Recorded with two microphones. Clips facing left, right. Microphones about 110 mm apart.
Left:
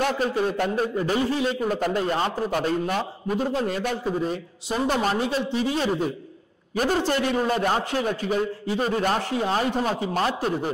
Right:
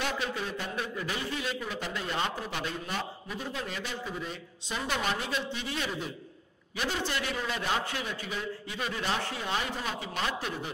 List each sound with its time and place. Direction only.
0.0 s a man's voice: 45° left (ahead or behind)